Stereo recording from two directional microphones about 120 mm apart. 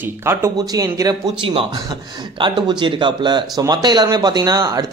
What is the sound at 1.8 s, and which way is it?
A man's voice, 40° right (ahead or behind).